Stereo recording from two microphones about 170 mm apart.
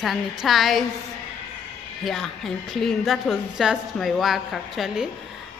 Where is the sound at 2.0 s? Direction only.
Centre (ahead or behind).